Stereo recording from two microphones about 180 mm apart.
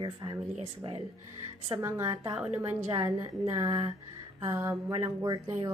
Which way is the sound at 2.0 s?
25° right (ahead or behind).